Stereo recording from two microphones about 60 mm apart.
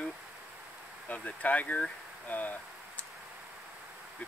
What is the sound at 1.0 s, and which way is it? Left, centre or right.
Speech, left.